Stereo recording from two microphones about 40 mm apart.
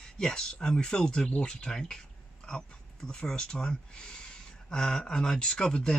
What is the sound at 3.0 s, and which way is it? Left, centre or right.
Speech, centre.